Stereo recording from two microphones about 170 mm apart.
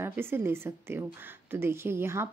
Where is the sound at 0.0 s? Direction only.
15° right (ahead or behind).